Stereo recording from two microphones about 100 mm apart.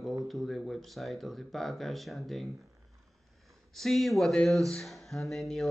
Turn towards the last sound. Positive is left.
turn(degrees=0)  # may be behind; listen again after turning